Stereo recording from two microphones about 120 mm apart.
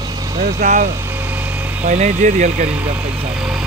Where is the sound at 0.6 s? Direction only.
75° right (ahead or behind).